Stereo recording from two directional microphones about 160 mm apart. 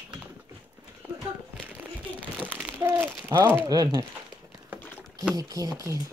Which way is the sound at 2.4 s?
10° right (ahead or behind).